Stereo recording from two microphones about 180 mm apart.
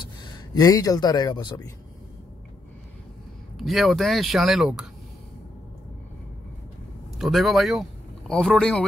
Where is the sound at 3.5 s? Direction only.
Centre (ahead or behind).